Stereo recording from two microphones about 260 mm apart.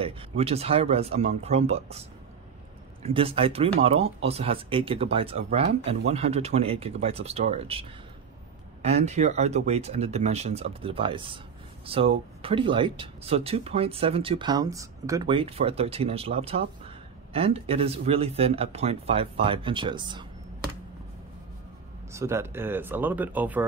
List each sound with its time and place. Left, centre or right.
0.0 s speech: right
8.8 s speech: right
22.1 s speech: centre